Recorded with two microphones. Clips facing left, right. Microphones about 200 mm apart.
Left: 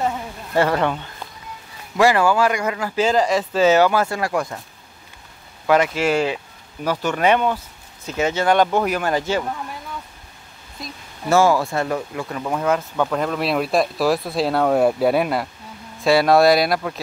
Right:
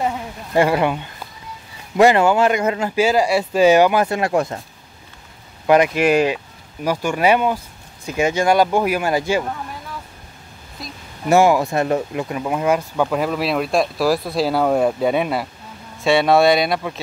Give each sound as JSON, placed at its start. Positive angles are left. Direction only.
{"t": 0.6, "sound": "speech", "side_deg": -10}
{"t": 2.0, "sound": "speech", "side_deg": -20}
{"t": 3.0, "sound": "speech", "side_deg": -10}
{"t": 5.7, "sound": "speech", "side_deg": -15}
{"t": 10.8, "sound": "a sound", "side_deg": 0}
{"t": 11.2, "sound": "speech", "side_deg": -15}